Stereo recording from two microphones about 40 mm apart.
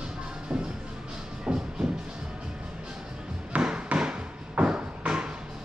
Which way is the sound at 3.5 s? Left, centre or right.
Right.